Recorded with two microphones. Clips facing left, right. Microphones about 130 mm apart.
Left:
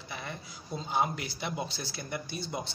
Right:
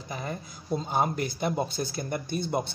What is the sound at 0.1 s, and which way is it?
Speech, 40° right (ahead or behind).